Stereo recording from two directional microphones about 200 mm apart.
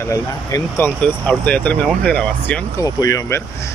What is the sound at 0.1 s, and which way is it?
Speech, 15° left (ahead or behind).